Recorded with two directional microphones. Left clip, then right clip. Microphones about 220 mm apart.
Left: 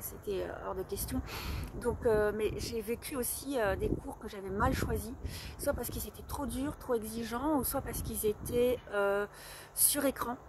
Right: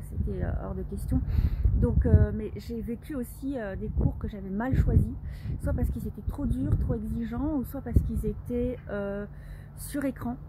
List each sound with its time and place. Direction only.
0.3 s speech: 5° left (ahead or behind)